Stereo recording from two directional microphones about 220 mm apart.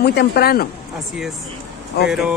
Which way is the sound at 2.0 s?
45° left (ahead or behind).